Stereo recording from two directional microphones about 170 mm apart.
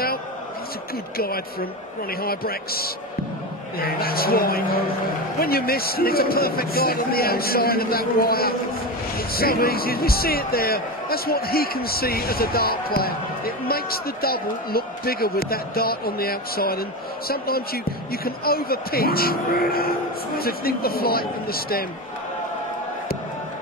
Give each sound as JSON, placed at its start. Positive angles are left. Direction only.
{"t": 1.1, "sound": "a man's voice", "side_deg": 60}